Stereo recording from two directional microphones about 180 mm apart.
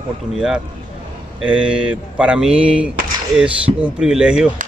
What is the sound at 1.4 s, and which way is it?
Speech, 5° right (ahead or behind).